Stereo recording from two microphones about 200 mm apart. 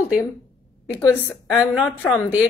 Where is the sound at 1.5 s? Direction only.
5° right (ahead or behind).